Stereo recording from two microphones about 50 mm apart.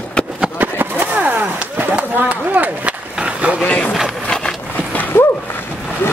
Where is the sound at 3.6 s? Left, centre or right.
Left.